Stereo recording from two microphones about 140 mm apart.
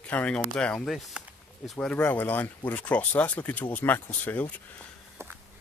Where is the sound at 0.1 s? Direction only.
10° left (ahead or behind).